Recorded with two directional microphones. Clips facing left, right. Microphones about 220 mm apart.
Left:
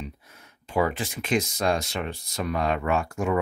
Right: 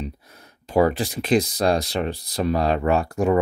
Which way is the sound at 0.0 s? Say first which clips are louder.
Right 6 dB; 40° right (ahead or behind).